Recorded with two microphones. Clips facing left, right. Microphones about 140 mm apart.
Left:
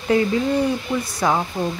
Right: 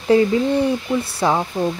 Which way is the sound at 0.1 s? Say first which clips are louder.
Right 3 dB; 30° right (ahead or behind).